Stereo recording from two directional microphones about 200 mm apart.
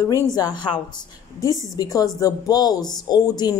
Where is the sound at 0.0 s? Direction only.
15° left (ahead or behind).